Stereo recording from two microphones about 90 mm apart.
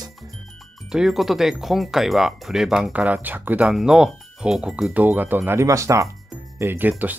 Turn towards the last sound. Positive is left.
turn(degrees=-20)  # may be behind; listen again after turning